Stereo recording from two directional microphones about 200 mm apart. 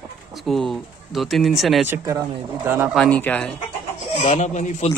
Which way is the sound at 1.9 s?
15° right (ahead or behind).